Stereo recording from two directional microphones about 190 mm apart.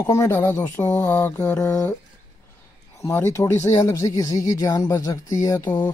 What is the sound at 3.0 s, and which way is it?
Speech, 15° left (ahead or behind).